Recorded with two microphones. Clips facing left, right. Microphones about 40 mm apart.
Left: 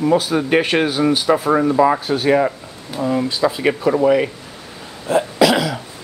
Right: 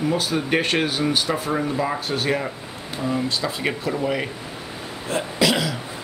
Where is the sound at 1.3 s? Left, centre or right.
Left.